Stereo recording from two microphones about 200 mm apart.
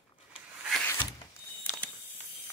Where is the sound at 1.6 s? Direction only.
5° left (ahead or behind).